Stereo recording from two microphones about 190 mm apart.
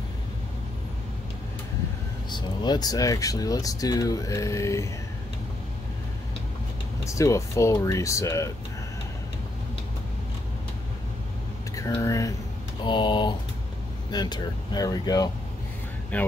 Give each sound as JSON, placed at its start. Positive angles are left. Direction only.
{"t": 2.3, "sound": "speech", "side_deg": 20}
{"t": 7.1, "sound": "speech", "side_deg": 15}
{"t": 11.7, "sound": "speech", "side_deg": 15}
{"t": 16.1, "sound": "speech", "side_deg": 10}